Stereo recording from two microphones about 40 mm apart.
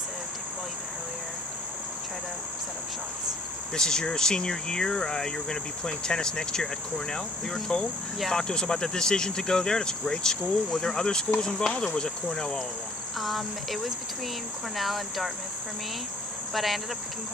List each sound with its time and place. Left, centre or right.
3.7 s speech: centre
13.2 s cricket: centre
16.5 s cricket: centre